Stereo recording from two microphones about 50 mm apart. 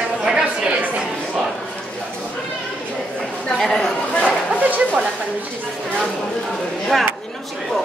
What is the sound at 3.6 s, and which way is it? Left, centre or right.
Speech, centre.